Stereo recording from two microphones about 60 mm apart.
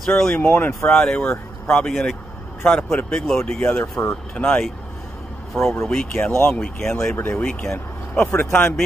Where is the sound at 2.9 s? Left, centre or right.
Left.